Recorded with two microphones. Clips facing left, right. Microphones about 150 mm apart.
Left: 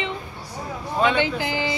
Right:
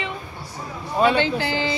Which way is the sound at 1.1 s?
15° left (ahead or behind).